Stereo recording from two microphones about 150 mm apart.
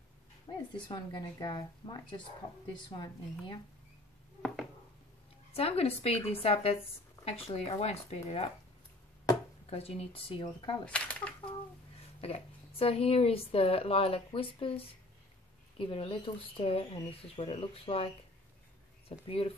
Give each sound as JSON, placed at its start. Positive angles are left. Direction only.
{"t": 0.5, "sound": "a woman's voice", "side_deg": 30}
{"t": 5.5, "sound": "a woman's voice", "side_deg": 40}
{"t": 9.7, "sound": "a woman's voice", "side_deg": 40}
{"t": 10.4, "sound": "speech", "side_deg": 30}
{"t": 10.9, "sound": "speech", "side_deg": 10}
{"t": 12.2, "sound": "a woman's voice", "side_deg": 40}
{"t": 15.8, "sound": "a woman's voice", "side_deg": 35}